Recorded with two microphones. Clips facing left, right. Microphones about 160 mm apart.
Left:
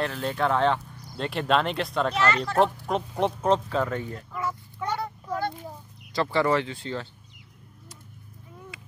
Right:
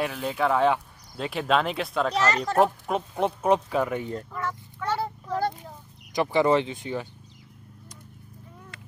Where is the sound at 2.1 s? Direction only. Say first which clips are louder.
Even; 40° right (ahead or behind).